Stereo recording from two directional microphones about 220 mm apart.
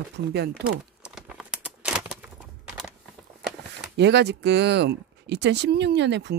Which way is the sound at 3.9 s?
50° right (ahead or behind).